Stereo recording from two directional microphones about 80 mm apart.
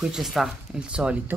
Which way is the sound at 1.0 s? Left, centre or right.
Centre.